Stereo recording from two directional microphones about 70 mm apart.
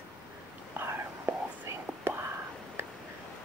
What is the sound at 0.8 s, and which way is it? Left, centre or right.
Whispering, right.